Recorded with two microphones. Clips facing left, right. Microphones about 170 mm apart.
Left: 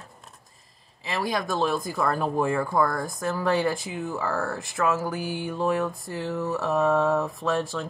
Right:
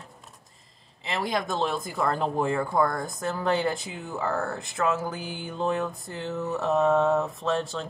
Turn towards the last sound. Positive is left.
turn(degrees=-25)  # may be behind; listen again after turning